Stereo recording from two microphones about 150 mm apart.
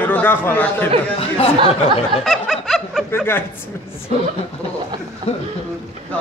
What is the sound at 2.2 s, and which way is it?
Snicker, centre (ahead or behind).